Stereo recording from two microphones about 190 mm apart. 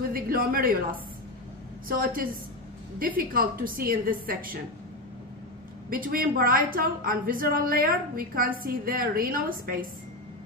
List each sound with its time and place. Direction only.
0.1 s speech: 50° right (ahead or behind)
1.9 s a woman's voice: 50° right (ahead or behind)
5.9 s a woman's voice: 50° right (ahead or behind)